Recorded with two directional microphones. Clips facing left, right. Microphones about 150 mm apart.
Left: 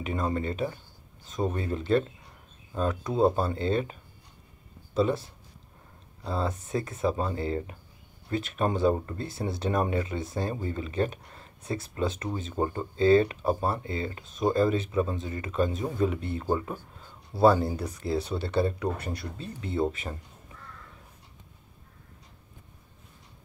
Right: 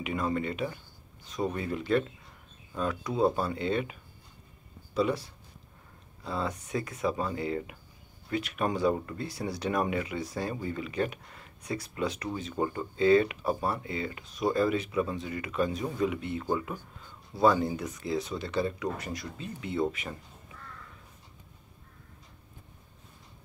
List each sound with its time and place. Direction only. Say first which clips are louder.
0.0 s speech: left 1 dB; 30° left (ahead or behind)
6.2 s speech: left 3 dB; 30° left (ahead or behind)